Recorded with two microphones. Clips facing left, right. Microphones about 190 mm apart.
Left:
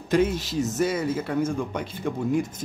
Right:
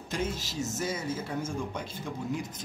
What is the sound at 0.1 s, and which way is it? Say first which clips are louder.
A man's voice: left 11 dB; 60° left (ahead or behind).